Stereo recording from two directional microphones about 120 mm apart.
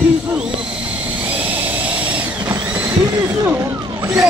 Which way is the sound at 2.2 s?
25° right (ahead or behind).